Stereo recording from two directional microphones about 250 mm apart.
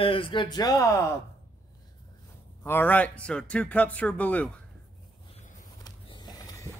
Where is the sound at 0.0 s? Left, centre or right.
Left.